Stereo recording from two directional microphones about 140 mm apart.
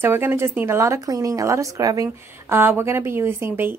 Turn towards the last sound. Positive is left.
turn(degrees=-15)  # may be behind; listen again after turning